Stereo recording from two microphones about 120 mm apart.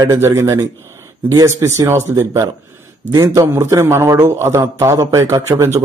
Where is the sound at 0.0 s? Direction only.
20° right (ahead or behind).